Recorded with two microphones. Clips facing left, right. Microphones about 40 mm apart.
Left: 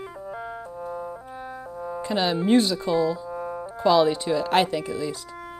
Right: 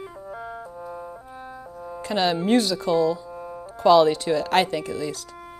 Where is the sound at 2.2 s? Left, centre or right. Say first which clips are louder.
Even; centre.